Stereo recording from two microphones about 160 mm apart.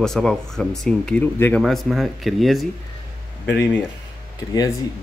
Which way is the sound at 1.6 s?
Centre (ahead or behind).